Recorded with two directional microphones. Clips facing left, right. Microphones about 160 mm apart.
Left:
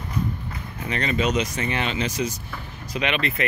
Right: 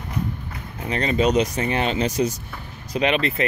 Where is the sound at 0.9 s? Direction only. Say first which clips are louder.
Right 4 dB; 35° right (ahead or behind).